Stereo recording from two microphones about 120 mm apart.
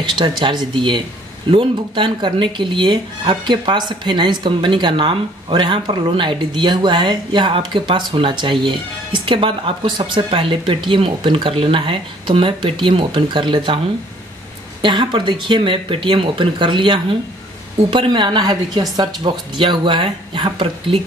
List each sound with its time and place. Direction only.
0.0 s speech: 40° right (ahead or behind)
14.8 s speech: 40° right (ahead or behind)